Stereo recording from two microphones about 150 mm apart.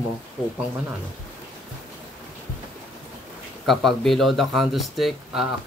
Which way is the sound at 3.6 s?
Centre (ahead or behind).